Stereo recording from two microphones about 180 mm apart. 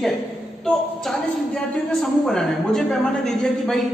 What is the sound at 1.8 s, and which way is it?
A woman's voice, 5° left (ahead or behind).